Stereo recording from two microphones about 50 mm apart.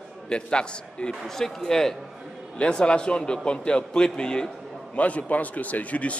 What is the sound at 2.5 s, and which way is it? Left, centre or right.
A man's voice, left.